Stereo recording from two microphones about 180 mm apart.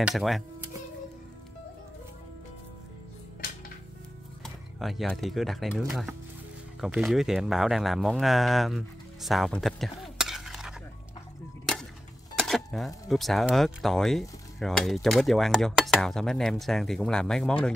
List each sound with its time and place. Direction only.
0.0 s cutlery: centre (ahead or behind)
3.3 s music: 55° left (ahead or behind)
4.4 s speech: centre (ahead or behind)
12.4 s speech: centre (ahead or behind)
14.6 s cutlery: centre (ahead or behind)